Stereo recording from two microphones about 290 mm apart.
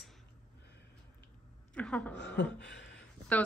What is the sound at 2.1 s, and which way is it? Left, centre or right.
Speech, left.